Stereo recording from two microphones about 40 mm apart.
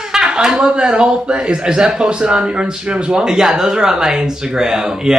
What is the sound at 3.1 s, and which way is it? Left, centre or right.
Speech, centre.